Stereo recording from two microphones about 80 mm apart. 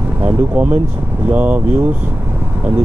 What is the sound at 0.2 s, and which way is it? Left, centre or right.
Speech, right.